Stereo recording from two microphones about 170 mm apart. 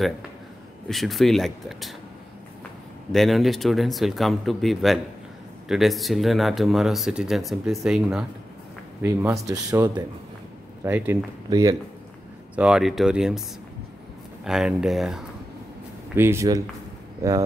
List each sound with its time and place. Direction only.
0.8 s speech: centre (ahead or behind)
3.1 s speech: centre (ahead or behind)
9.0 s speech: 15° right (ahead or behind)
10.8 s speech: 10° right (ahead or behind)
12.5 s speech: 5° right (ahead or behind)
14.4 s speech: 5° right (ahead or behind)
16.2 s speech: 15° right (ahead or behind)